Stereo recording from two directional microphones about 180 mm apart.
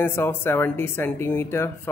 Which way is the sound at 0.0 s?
15° left (ahead or behind).